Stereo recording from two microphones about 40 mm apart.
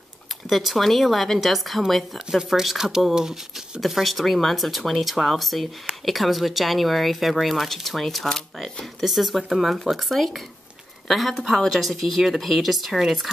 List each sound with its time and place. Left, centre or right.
0.5 s speech: centre
2.1 s speech: centre
3.8 s speech: centre